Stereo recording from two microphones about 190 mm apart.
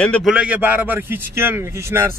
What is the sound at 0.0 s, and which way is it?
A man's voice, 5° left (ahead or behind).